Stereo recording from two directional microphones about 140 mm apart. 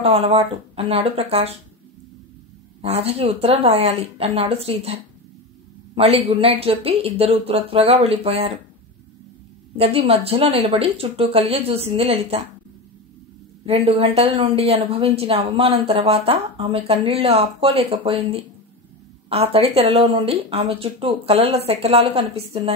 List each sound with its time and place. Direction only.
0.0 s speech: 45° right (ahead or behind)
2.8 s speech: 45° right (ahead or behind)
9.8 s speech: 45° right (ahead or behind)
13.7 s speech: 45° right (ahead or behind)